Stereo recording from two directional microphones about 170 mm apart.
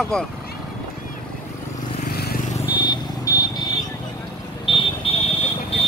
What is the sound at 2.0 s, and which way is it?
Vehicle, 65° left (ahead or behind).